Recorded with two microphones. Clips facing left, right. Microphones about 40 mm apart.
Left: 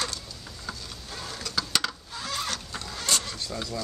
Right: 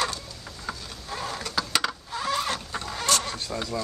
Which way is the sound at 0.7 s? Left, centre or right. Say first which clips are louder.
Right 4 dB; right.